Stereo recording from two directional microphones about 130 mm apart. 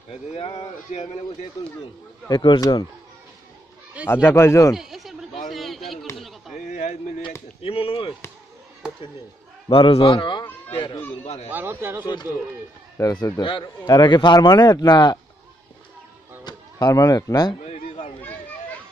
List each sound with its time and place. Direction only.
0.1 s a man's voice: 40° left (ahead or behind)
2.2 s a man's voice: 35° left (ahead or behind)
4.1 s speech: 20° left (ahead or behind)
4.7 s a sound: centre (ahead or behind)
6.7 s a sound: 70° left (ahead or behind)
7.6 s a man's voice: 45° left (ahead or behind)
9.7 s a man's voice: 45° left (ahead or behind)
11.5 s speech: 15° right (ahead or behind)
12.9 s a man's voice: 30° left (ahead or behind)
16.4 s speech: 30° left (ahead or behind)
17.6 s a sound: 55° left (ahead or behind)